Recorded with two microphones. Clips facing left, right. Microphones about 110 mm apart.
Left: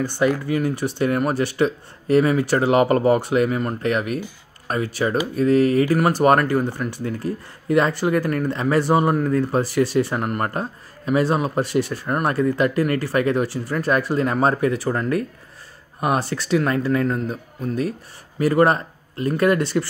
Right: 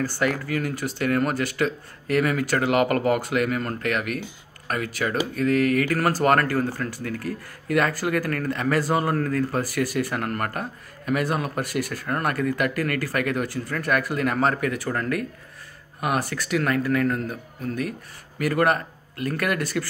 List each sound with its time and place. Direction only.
0.0 s speech: 20° left (ahead or behind)